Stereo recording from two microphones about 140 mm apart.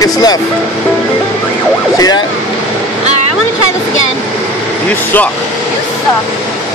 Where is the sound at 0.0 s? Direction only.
25° left (ahead or behind).